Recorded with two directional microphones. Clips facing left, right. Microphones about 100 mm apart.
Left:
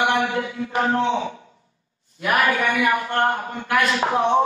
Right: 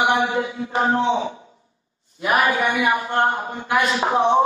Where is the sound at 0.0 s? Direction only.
15° right (ahead or behind).